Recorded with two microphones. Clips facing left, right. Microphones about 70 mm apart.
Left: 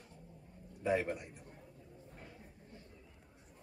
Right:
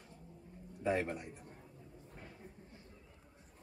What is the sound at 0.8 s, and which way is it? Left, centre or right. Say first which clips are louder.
Speech: left 1 dB; centre.